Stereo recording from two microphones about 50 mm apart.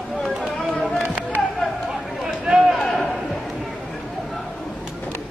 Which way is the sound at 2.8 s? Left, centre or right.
Centre.